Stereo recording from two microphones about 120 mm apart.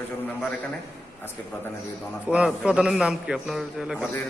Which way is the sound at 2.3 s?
10° right (ahead or behind).